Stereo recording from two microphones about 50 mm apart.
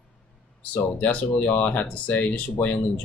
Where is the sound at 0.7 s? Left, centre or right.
Left.